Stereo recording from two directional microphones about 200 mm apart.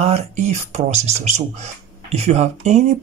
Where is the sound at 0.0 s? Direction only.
35° right (ahead or behind).